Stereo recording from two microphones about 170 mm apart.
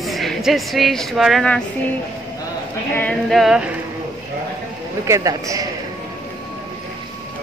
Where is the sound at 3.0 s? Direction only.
5° left (ahead or behind).